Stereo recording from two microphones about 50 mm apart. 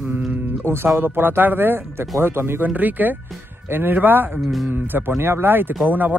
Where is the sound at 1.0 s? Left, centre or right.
Right.